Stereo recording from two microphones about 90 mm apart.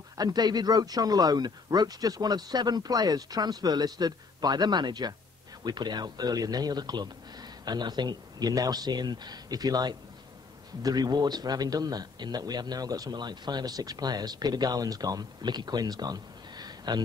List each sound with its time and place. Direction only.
0.2 s a man's voice: 50° right (ahead or behind)